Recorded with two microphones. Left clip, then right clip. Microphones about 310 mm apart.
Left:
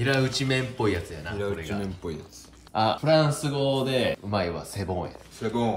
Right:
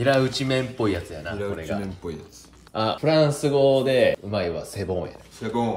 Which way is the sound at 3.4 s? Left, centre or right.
Centre.